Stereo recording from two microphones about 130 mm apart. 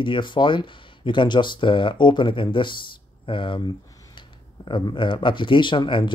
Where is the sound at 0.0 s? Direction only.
40° left (ahead or behind).